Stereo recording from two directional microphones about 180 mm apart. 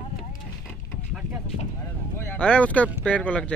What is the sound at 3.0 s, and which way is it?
Speech, 5° left (ahead or behind).